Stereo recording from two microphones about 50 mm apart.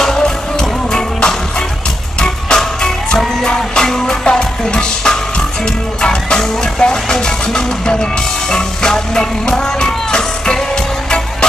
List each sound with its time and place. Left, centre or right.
0.0 s music: centre